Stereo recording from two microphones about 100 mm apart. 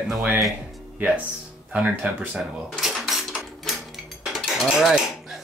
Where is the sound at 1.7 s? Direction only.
10° right (ahead or behind).